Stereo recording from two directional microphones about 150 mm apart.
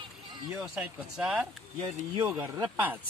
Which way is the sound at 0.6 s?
5° right (ahead or behind).